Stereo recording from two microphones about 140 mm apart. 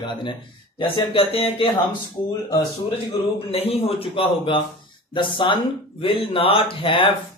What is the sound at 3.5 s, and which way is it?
A man's voice, 45° left (ahead or behind).